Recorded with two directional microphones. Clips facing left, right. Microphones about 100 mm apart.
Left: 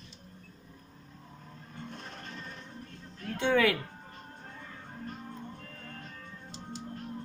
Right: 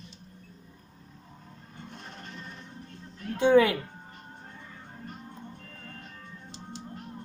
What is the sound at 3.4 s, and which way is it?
Speech, 25° right (ahead or behind).